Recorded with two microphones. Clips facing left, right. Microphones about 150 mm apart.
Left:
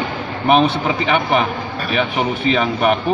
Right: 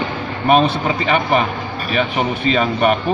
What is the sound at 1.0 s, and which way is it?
Speech, centre (ahead or behind).